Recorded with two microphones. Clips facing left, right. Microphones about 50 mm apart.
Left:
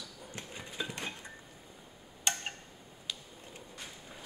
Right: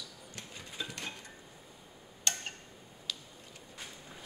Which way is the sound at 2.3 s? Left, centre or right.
Centre.